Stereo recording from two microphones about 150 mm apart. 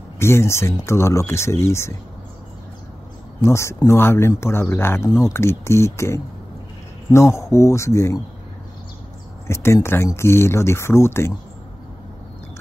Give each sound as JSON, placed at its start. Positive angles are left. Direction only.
{"t": 0.2, "sound": "speech", "side_deg": 15}
{"t": 3.4, "sound": "speech", "side_deg": 20}
{"t": 9.5, "sound": "speech", "side_deg": 20}